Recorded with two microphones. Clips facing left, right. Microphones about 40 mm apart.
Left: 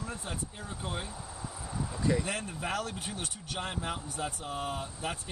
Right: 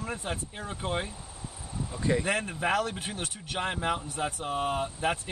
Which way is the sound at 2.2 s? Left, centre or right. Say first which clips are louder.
Right 7 dB; right.